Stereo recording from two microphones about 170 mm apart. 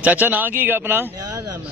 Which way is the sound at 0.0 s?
10° right (ahead or behind).